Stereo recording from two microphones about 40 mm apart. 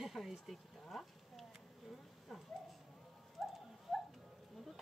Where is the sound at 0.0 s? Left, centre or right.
Centre.